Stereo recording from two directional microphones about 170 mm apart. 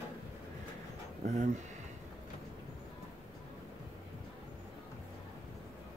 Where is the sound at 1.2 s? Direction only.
45° right (ahead or behind).